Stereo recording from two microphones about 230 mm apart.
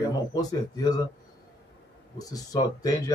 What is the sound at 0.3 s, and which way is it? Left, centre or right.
Speech, centre.